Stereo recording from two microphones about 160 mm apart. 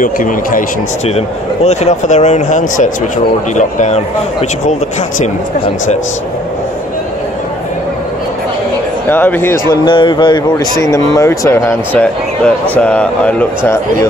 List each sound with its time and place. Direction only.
0.0 s speech: 55° left (ahead or behind)
1.0 s speech: 40° left (ahead or behind)
9.1 s speech: 10° left (ahead or behind)
9.8 s speech: 30° left (ahead or behind); by 13.5 s 10° left (ahead or behind)